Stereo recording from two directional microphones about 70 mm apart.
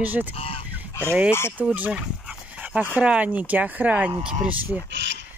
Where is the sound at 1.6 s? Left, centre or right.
Centre.